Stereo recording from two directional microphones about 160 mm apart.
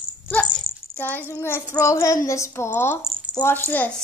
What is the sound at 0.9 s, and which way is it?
Child singing, 10° left (ahead or behind).